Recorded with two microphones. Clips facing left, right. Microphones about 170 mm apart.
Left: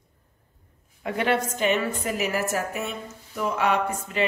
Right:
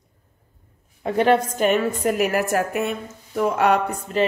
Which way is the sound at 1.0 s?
30° right (ahead or behind).